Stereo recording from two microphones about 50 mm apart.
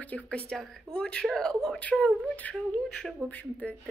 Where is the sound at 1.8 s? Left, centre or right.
Left.